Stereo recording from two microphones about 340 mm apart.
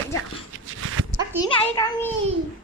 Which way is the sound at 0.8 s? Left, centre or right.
Right.